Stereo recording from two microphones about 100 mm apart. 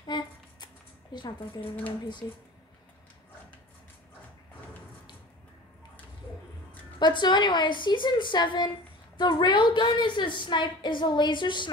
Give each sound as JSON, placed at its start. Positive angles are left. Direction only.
{"t": 0.0, "sound": "a sound", "side_deg": 45}
{"t": 1.1, "sound": "speech", "side_deg": 55}
{"t": 2.2, "sound": "speech", "side_deg": 40}
{"t": 7.0, "sound": "a woman's voice", "side_deg": 50}